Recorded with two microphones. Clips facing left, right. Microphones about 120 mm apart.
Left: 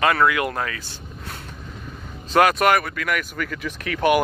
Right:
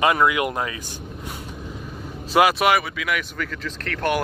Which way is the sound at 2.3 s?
5° right (ahead or behind).